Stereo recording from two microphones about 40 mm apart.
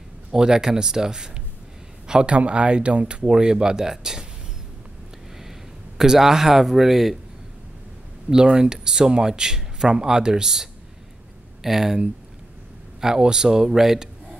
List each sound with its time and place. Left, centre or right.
0.3 s a man's voice: centre
2.3 s speech: right; by 4.3 s centre
5.4 s speech: centre
8.3 s speech: centre
13.0 s speech: centre